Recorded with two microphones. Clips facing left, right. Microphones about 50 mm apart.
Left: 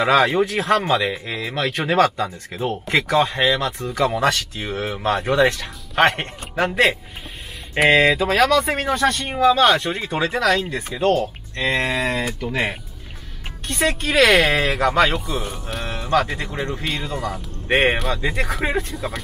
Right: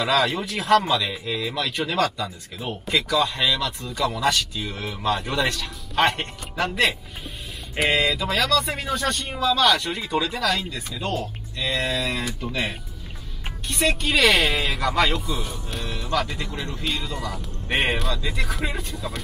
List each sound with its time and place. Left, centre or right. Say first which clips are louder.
0.0 s speech: left 6 dB; left
9.3 s speech: left 4 dB; left
15.8 s speech: left 6 dB; left
18.9 s speech: left 4 dB; centre